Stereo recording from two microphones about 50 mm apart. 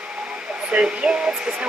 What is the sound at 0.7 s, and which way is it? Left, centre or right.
Speech, right.